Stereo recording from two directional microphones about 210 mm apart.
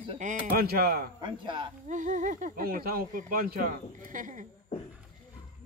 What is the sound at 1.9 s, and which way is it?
Speech, 35° right (ahead or behind).